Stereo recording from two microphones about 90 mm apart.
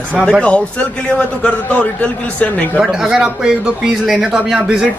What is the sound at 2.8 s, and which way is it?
A man's voice, 5° right (ahead or behind).